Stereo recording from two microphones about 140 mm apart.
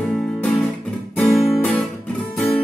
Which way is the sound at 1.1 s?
Centre (ahead or behind).